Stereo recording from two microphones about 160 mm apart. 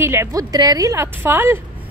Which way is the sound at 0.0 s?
15° right (ahead or behind).